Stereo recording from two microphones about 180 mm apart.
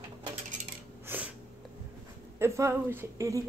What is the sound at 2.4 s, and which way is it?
Speech, 15° right (ahead or behind).